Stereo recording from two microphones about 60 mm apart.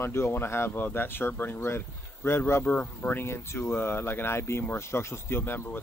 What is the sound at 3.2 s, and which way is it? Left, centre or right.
Speech, left.